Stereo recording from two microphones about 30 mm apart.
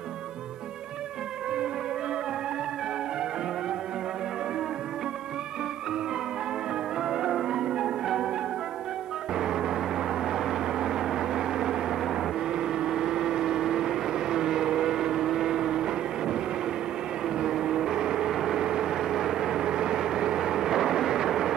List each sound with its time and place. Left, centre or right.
7.0 s music: right
9.3 s vehicle: right